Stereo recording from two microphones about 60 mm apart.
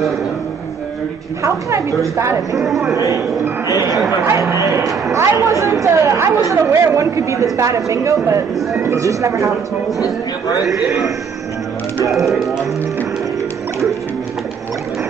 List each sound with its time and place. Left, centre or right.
1.4 s speech: right
2.5 s speech: centre
3.6 s speech: right
12.1 s speech: centre